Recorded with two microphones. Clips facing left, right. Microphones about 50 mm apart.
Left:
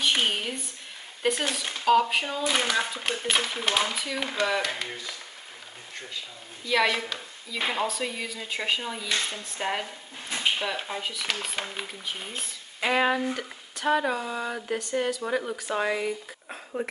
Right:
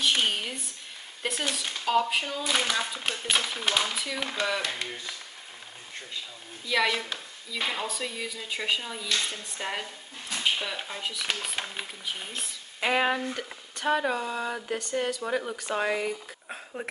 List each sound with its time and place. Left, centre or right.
0.0 s a sound: centre
1.2 s speech: centre
6.7 s speech: centre